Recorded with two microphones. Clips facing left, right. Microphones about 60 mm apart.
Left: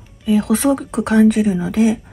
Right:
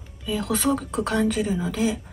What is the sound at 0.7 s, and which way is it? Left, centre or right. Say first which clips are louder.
Speech: left 8 dB; centre.